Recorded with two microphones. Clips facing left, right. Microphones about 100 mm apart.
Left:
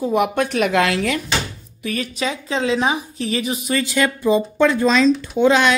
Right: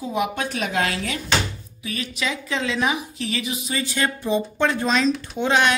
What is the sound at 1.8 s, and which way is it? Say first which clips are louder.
Speech: left 6 dB; 50° left (ahead or behind).